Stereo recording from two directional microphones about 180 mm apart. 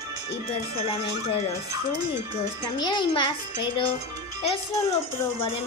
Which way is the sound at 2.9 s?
25° left (ahead or behind).